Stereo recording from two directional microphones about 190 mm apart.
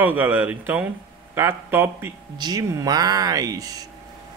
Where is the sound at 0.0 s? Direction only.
10° right (ahead or behind).